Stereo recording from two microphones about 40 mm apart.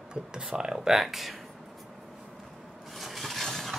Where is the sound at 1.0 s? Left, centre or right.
Centre.